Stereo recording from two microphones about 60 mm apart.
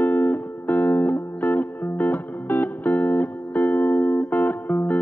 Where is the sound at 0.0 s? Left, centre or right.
Left.